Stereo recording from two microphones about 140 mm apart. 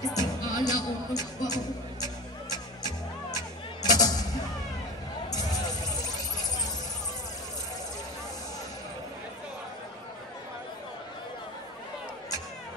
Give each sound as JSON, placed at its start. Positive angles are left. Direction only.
{"t": 0.0, "sound": "music", "side_deg": 25}